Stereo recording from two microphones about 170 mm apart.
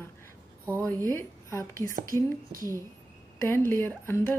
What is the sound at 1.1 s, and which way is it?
Speech, 15° left (ahead or behind).